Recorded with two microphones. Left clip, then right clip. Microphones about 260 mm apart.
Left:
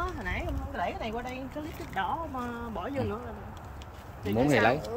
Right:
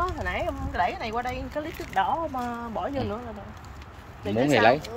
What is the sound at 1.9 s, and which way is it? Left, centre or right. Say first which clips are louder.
Speech: right 7 dB; right.